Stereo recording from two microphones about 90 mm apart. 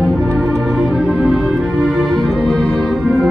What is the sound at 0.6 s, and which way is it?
Music, 10° right (ahead or behind).